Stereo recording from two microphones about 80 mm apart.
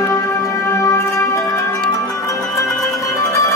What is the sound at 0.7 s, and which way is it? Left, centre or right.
Music, left.